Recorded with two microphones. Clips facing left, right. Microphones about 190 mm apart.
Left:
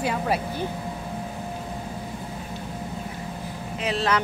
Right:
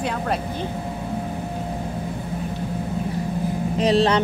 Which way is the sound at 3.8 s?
30° right (ahead or behind).